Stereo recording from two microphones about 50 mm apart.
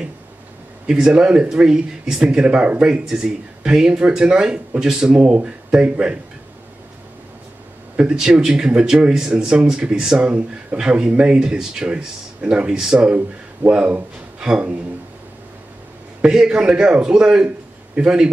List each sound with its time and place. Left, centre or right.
0.8 s speech: centre
2.9 s speech: centre
8.0 s speech: centre
16.3 s speech: centre